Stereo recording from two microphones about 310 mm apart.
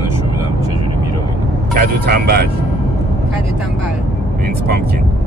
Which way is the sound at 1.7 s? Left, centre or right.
Right.